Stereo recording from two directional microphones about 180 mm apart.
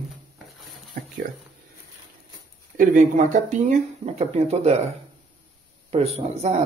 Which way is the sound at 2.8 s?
45° right (ahead or behind).